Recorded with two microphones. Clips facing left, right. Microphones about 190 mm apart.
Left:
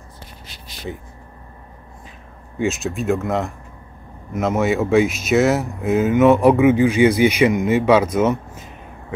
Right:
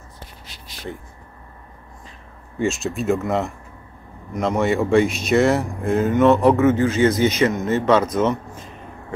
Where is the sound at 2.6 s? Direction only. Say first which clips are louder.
Left 1 dB; centre (ahead or behind).